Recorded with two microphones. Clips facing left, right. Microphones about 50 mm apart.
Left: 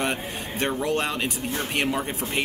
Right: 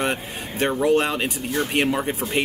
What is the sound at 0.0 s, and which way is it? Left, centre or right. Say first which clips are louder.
Speech: right 2 dB; centre.